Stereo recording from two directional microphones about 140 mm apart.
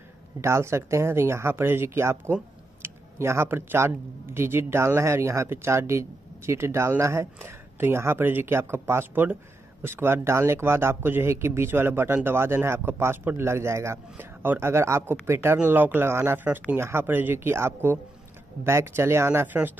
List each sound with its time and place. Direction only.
0.4 s speech: 20° right (ahead or behind)